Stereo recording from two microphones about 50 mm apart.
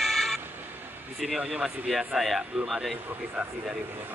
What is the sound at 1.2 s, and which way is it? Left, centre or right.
A man's voice, centre.